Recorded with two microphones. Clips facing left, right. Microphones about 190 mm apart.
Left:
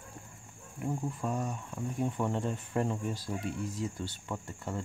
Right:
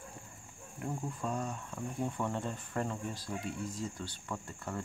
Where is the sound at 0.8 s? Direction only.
10° left (ahead or behind).